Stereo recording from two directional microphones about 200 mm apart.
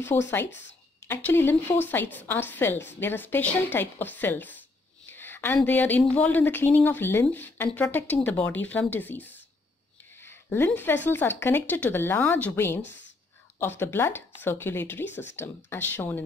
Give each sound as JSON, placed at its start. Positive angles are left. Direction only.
{"t": 0.4, "sound": "speech", "side_deg": 65}
{"t": 1.0, "sound": "a woman's voice", "side_deg": 10}
{"t": 12.8, "sound": "speech", "side_deg": 65}
{"t": 13.6, "sound": "a woman's voice", "side_deg": 10}